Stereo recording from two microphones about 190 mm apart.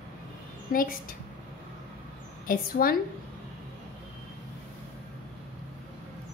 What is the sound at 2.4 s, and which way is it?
Speech, 50° left (ahead or behind).